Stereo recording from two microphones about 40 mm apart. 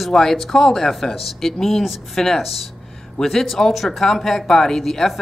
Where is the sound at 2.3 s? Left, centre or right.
Centre.